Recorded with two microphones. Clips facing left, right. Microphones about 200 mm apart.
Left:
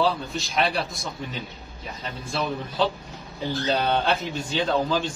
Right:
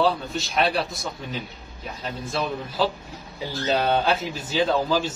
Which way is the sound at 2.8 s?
5° right (ahead or behind).